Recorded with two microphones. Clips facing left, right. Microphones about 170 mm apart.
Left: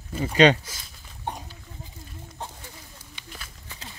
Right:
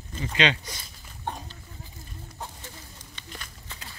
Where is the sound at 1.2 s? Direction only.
15° left (ahead or behind).